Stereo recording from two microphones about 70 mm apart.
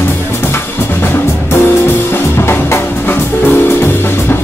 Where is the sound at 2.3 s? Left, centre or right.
Left.